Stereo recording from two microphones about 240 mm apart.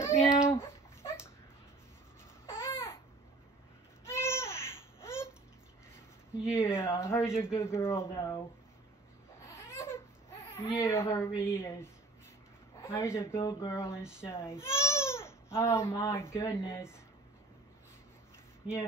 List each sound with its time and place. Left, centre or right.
0.0 s a sound: centre
2.4 s babbling: centre
4.0 s baby cry: centre
6.6 s a woman's voice: centre
9.5 s a sound: centre
10.6 s a woman's voice: centre
18.6 s speech: centre